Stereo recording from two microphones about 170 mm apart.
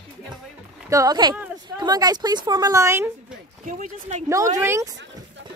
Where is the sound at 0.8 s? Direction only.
20° right (ahead or behind).